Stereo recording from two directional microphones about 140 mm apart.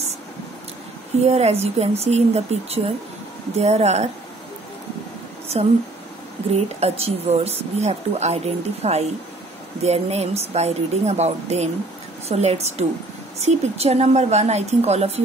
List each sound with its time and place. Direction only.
1.2 s speech: 45° right (ahead or behind)
6.5 s speech: 45° right (ahead or behind)